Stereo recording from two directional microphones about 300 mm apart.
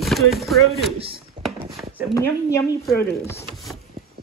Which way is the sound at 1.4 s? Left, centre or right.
Centre.